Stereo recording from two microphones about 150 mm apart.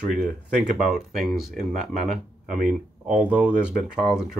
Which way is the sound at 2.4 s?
60° right (ahead or behind).